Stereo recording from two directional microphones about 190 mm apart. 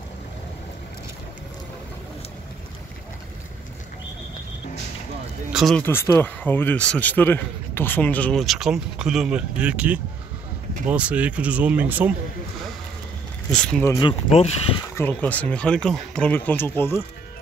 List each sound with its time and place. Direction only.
5.5 s speech: centre (ahead or behind)
5.8 s a man's voice: 10° left (ahead or behind); by 12.1 s 10° right (ahead or behind)
13.5 s speech: 5° left (ahead or behind)
13.9 s speech: 30° left (ahead or behind)
15.0 s a man's voice: 10° left (ahead or behind)